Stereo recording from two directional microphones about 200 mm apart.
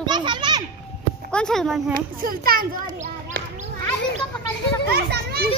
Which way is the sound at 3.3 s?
50° right (ahead or behind).